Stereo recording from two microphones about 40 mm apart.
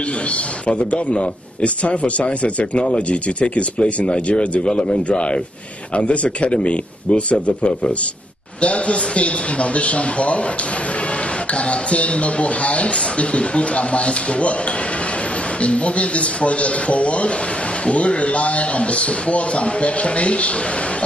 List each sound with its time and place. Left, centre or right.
0.7 s a man's voice: left
11.5 s a man's voice: left
15.6 s a man's voice: left